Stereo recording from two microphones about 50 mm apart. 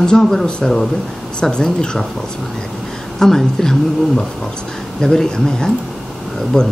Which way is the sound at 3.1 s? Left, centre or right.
Centre.